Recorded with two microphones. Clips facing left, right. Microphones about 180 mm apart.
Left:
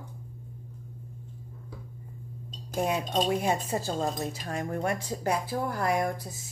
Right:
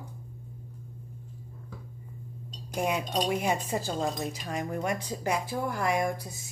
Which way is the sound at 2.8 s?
30° left (ahead or behind).